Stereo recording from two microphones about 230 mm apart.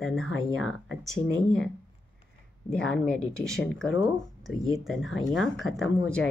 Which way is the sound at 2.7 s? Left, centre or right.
Centre.